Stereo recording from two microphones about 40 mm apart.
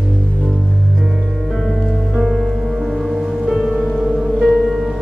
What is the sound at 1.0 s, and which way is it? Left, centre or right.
Music, centre.